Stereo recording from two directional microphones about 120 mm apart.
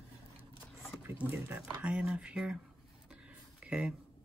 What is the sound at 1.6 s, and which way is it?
Speech, 10° right (ahead or behind).